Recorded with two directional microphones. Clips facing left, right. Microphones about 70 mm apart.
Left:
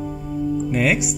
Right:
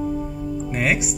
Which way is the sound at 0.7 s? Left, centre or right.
Right.